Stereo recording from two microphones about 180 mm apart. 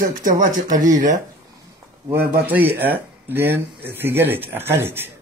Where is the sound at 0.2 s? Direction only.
50° right (ahead or behind).